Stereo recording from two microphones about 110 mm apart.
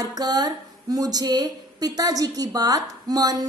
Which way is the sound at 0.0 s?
35° right (ahead or behind).